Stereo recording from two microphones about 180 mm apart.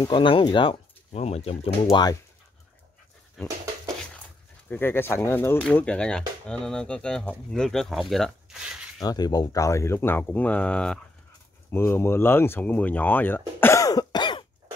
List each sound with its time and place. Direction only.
0.0 s speech: 25° left (ahead or behind)
3.4 s dog: 5° left (ahead or behind)
4.6 s speech: 10° left (ahead or behind)
9.0 s speech: 20° left (ahead or behind)